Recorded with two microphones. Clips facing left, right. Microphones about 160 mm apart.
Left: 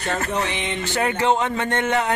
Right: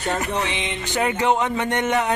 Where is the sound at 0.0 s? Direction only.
15° right (ahead or behind).